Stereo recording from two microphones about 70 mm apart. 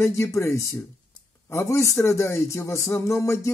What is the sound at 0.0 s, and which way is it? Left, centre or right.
Speech, left.